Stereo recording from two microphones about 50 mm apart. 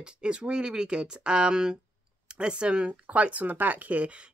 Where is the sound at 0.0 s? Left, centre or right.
Centre.